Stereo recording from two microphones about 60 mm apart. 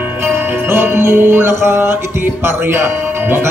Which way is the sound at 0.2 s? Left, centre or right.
Right.